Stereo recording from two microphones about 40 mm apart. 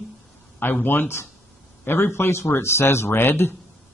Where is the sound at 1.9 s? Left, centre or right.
Left.